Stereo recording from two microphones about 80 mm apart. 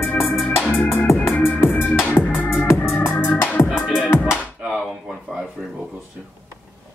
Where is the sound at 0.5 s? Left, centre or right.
Left.